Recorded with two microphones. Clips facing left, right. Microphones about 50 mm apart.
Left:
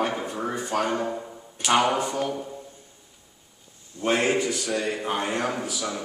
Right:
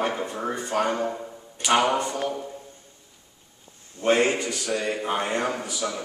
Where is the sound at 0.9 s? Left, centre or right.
Centre.